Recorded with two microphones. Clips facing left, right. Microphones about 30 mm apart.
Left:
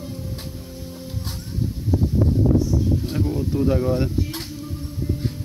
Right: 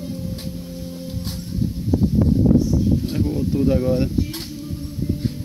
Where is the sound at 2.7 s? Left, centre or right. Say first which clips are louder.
Right 2 dB; left.